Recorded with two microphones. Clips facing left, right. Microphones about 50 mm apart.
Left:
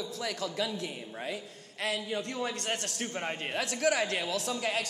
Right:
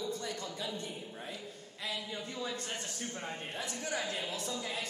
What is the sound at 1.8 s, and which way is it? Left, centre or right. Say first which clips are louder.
A man's voice: left 7 dB; left.